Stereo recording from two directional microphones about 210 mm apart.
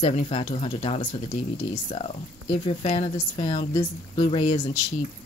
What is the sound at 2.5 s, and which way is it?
Speech, 30° left (ahead or behind).